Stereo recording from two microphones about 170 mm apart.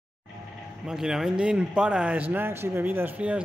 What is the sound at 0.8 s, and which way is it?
A man's voice, 5° right (ahead or behind).